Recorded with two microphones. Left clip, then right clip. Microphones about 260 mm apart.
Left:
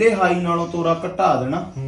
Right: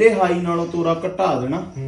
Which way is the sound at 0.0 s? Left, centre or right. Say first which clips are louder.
Right 1 dB; centre.